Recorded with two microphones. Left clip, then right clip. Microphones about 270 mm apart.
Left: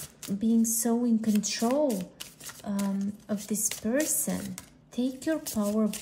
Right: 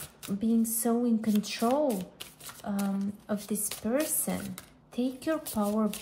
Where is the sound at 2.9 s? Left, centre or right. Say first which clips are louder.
Even; centre.